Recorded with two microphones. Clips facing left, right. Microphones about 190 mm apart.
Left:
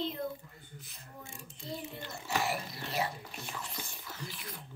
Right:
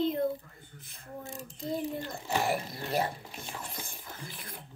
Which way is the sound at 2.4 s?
50° right (ahead or behind).